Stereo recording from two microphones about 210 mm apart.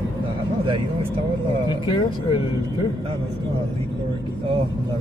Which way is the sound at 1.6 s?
20° left (ahead or behind).